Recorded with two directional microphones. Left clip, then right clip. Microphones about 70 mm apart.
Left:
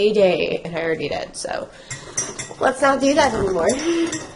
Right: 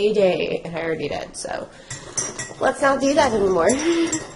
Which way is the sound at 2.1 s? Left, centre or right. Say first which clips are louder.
Even; right.